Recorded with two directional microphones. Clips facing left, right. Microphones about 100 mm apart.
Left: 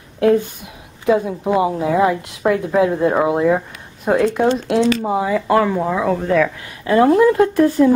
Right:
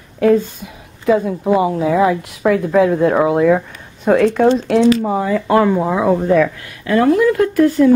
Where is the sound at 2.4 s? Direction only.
15° left (ahead or behind).